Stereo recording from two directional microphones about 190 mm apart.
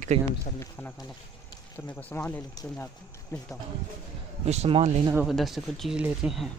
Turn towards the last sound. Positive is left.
turn(degrees=-5)  # may be behind; listen again after turning